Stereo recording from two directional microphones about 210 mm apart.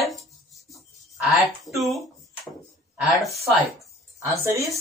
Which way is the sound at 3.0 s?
Centre (ahead or behind).